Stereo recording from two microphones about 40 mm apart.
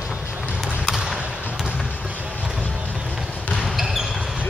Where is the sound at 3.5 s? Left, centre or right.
Centre.